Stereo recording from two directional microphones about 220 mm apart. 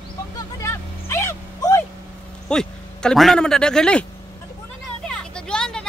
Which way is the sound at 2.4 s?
5° left (ahead or behind).